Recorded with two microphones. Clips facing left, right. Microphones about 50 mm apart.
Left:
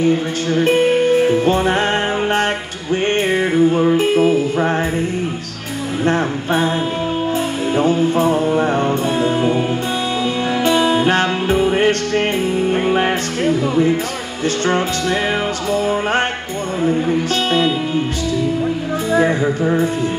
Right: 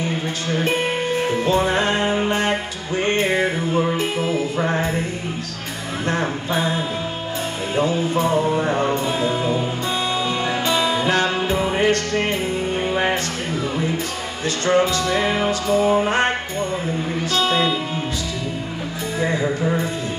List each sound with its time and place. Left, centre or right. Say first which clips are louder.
1.4 s music: left 3 dB; left
4.2 s music: left 6 dB; left
6.0 s music: left 5 dB; left
7.7 s music: left 4 dB; left
9.2 s music: left 4 dB; left
10.7 s music: left 5 dB; left
14.4 s music: left 1 dB; left
17.4 s music: left 2 dB; left